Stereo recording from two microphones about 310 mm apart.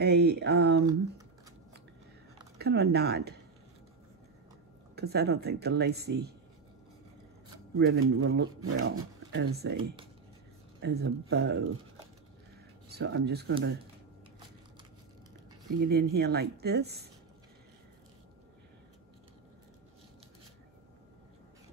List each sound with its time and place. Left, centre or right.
0.0 s speech: right
2.6 s speech: right
4.9 s speech: right
7.7 s speech: right
10.8 s speech: right
12.9 s speech: right
15.8 s speech: right